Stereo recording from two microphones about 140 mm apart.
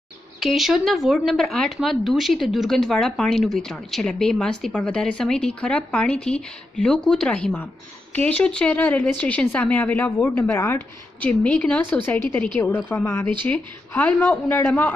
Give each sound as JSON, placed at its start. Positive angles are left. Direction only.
{"t": 0.4, "sound": "a woman's voice", "side_deg": 0}
{"t": 12.9, "sound": "a woman's voice", "side_deg": 20}